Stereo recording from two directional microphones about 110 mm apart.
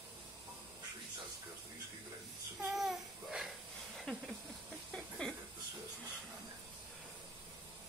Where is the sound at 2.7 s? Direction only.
Centre (ahead or behind).